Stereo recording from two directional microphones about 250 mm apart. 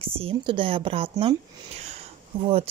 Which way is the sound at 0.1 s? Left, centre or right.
Right.